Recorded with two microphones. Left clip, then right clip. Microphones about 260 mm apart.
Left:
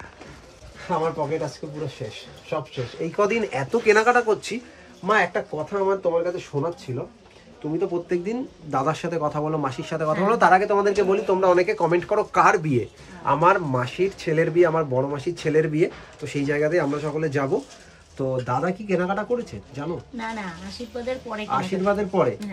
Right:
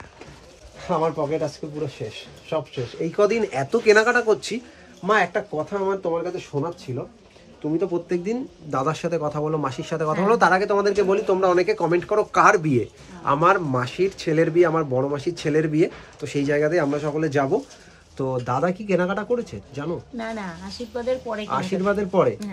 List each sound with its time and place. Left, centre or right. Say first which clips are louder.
0.8 s speech: right 2 dB; centre
2.5 s speech: right 2 dB; centre
7.8 s speech: left 3 dB; centre